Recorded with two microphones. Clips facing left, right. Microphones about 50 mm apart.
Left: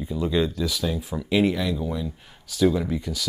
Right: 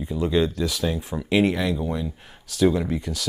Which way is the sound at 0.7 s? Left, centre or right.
Right.